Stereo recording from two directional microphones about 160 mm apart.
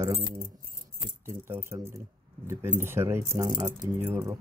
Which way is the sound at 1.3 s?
15° right (ahead or behind).